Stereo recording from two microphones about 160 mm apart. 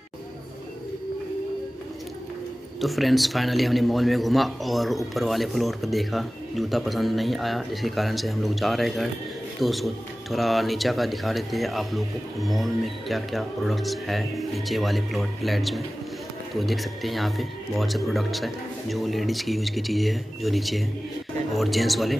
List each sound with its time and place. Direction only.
2.8 s a man's voice: centre (ahead or behind)